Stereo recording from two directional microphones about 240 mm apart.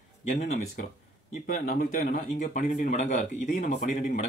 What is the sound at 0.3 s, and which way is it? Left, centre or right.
Speech, left.